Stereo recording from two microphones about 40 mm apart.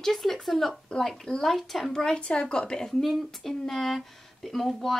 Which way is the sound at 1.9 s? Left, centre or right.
Centre.